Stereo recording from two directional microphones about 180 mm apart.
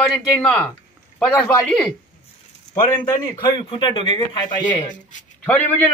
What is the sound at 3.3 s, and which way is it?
Speech, 25° left (ahead or behind).